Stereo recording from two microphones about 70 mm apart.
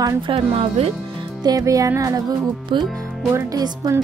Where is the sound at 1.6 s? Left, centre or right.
Right.